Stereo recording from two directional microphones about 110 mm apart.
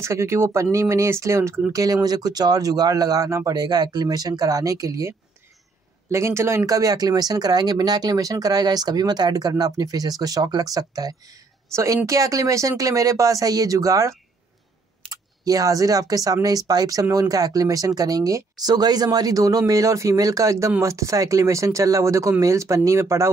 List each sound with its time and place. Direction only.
0.0 s speech: 25° right (ahead or behind)
15.4 s speech: 30° right (ahead or behind)